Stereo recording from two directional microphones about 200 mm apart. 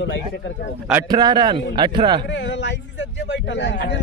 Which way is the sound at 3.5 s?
60° left (ahead or behind).